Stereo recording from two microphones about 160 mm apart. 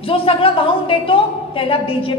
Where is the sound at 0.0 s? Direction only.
35° left (ahead or behind).